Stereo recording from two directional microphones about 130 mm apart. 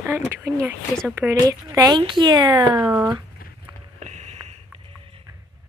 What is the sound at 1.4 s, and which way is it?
Speech, 30° right (ahead or behind).